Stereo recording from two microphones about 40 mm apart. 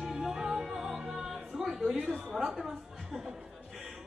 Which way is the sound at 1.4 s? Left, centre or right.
Centre.